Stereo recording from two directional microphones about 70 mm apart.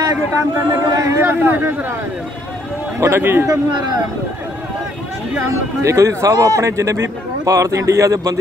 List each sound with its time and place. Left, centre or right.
0.0 s a man's voice: right
1.2 s speech: right
3.0 s speech: right
3.4 s speech: right
5.8 s a man's voice: right